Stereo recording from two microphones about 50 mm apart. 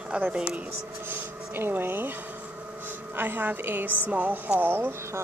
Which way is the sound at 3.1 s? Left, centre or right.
Right.